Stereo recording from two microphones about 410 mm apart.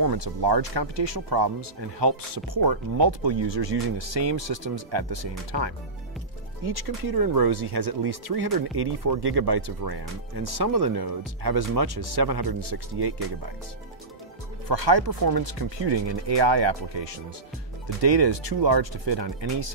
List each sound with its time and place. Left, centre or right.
0.2 s speech: right
5.5 s speech: right
6.6 s speech: right
14.7 s speech: right